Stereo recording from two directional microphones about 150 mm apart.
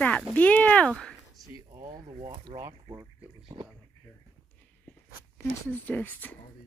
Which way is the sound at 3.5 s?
45° right (ahead or behind).